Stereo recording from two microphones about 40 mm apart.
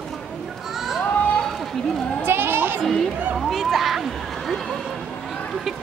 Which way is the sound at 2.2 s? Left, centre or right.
Right.